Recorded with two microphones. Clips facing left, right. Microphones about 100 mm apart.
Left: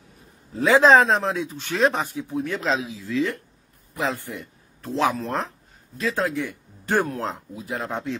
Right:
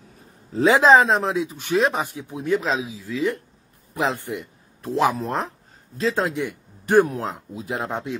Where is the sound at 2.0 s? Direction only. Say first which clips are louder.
Even; 15° right (ahead or behind).